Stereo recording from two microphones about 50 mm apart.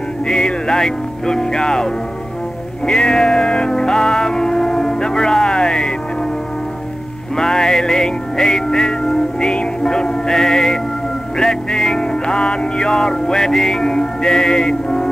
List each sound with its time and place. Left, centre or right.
0.3 s speech: centre
2.8 s music: centre
7.3 s music: centre